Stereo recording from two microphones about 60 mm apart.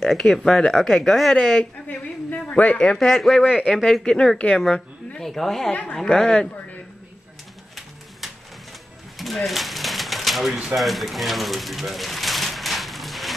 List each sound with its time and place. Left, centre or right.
0.0 s speech: centre
1.6 s a sound: left
2.8 s speech: centre
3.1 s speech: centre
3.4 s speech: centre
3.7 s speech: centre
4.0 s speech: centre
5.7 s a woman's voice: left
9.2 s typewriter: centre
10.6 s pigeon: centre